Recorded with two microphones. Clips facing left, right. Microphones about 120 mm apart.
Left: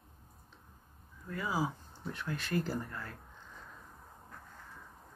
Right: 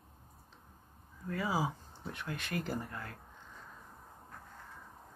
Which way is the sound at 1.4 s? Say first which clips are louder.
Even; 15° right (ahead or behind).